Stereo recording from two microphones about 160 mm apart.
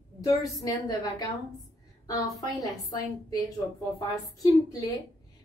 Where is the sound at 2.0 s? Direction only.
20° left (ahead or behind).